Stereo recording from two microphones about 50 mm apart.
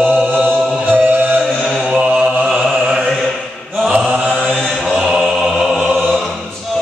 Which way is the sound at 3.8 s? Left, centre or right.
Centre.